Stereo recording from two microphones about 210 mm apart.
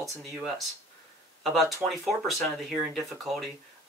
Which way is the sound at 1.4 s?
Centre (ahead or behind).